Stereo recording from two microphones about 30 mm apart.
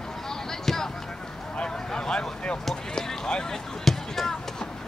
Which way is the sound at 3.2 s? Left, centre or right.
Left.